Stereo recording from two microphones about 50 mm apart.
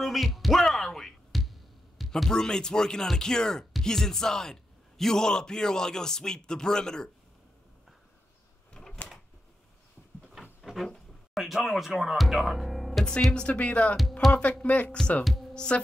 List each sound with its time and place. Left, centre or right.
0.0 s music: centre
2.0 s a man's voice: centre
8.8 s drawer open or close: centre
10.3 s a sound: centre
11.3 s speech: centre
13.3 s speech: centre
15.5 s heart sounds: centre